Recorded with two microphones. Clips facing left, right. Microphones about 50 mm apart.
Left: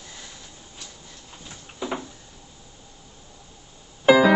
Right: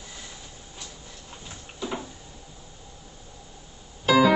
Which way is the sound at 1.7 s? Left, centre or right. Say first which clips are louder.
Left 2 dB; left.